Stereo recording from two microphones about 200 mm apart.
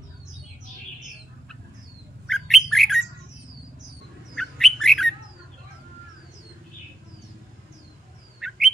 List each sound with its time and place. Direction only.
2.2 s bird: centre (ahead or behind)
4.4 s bird: centre (ahead or behind)
8.4 s bird: centre (ahead or behind)